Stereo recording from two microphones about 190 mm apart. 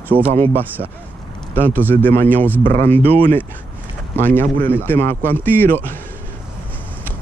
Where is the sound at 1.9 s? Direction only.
10° left (ahead or behind).